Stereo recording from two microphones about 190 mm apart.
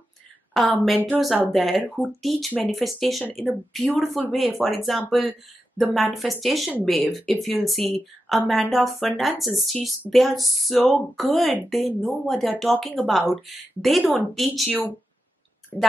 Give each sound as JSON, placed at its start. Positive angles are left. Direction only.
{"t": 0.5, "sound": "speech", "side_deg": 0}